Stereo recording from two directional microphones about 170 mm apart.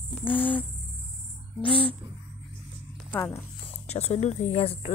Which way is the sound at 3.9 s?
40° left (ahead or behind).